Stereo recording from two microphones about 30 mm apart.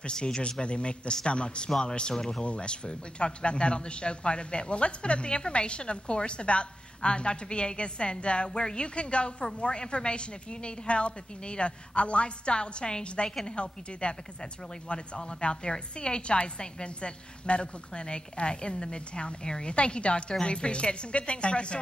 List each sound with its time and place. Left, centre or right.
0.1 s speech: left
2.4 s speech: left